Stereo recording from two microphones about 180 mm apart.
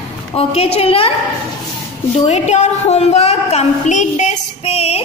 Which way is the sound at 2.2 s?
40° left (ahead or behind).